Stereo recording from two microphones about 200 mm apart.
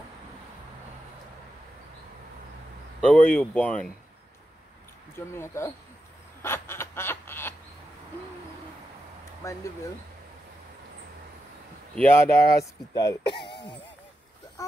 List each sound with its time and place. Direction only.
3.0 s speech: 5° left (ahead or behind)
5.3 s speech: 15° left (ahead or behind)
6.4 s snicker: 10° left (ahead or behind)
9.4 s speech: 15° left (ahead or behind)
11.9 s speech: 10° left (ahead or behind); by 13.7 s 25° left (ahead or behind)